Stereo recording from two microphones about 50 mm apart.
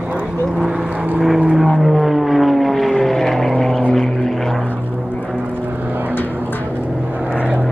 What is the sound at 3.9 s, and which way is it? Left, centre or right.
Vehicle, centre.